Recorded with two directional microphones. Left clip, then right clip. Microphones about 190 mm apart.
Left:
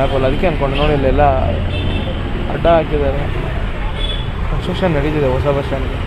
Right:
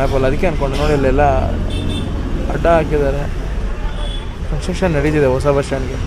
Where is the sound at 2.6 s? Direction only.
20° right (ahead or behind).